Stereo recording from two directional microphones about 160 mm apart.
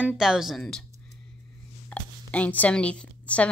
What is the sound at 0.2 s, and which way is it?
Speech, 5° right (ahead or behind).